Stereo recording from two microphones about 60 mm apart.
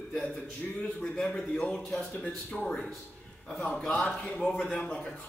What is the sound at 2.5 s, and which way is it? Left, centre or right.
Speech, centre.